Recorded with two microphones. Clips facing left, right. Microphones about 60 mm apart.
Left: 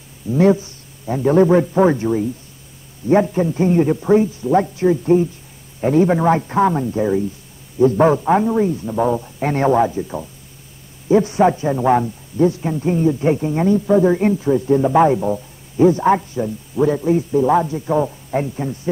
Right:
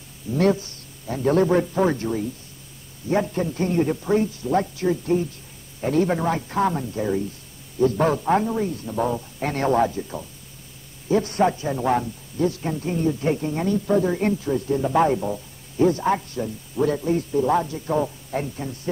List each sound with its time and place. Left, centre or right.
0.3 s a man's voice: centre
3.3 s a man's voice: centre
6.2 s a man's voice: left